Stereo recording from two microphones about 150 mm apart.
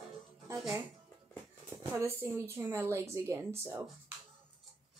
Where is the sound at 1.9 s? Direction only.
15° right (ahead or behind).